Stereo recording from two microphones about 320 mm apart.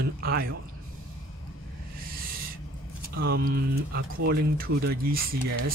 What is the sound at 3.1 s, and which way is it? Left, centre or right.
Speech, right.